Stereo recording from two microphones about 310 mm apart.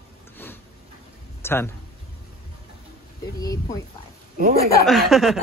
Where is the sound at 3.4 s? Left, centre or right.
Centre.